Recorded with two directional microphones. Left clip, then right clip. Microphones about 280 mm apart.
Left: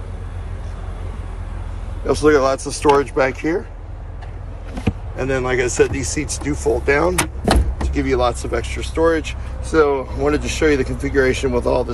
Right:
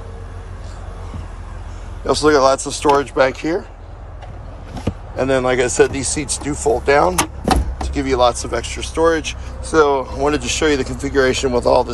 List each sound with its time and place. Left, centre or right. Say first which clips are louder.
2.0 s speech: right 2 dB; centre
4.8 s speech: right 4 dB; centre